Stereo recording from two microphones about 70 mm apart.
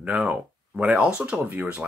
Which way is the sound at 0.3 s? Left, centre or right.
Centre.